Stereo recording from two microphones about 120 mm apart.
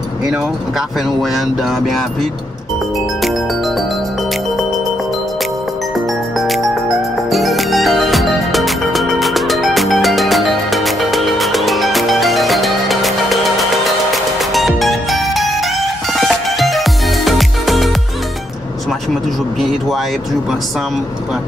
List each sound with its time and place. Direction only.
0.2 s speech: 5° right (ahead or behind)
3.2 s music: centre (ahead or behind)
5.9 s music: centre (ahead or behind)